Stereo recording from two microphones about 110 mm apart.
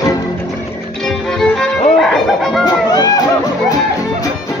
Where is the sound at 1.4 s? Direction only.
5° left (ahead or behind).